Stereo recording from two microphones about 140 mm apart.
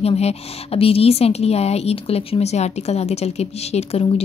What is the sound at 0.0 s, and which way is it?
A woman's voice, 45° left (ahead or behind).